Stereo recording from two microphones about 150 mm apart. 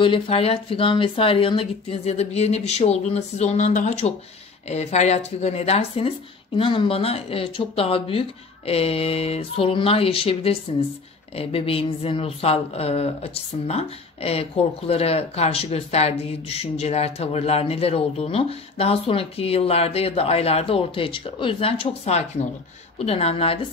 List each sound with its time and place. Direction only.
0.0 s a woman's voice: 40° left (ahead or behind)